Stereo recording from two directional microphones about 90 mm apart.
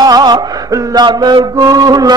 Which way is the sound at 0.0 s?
50° right (ahead or behind).